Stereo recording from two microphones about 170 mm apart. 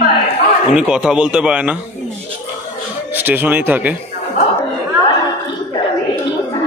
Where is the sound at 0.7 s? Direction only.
5° right (ahead or behind).